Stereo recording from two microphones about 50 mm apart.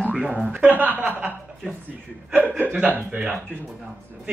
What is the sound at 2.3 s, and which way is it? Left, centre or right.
Speech, right.